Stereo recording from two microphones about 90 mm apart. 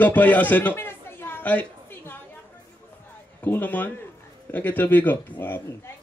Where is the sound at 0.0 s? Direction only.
20° left (ahead or behind).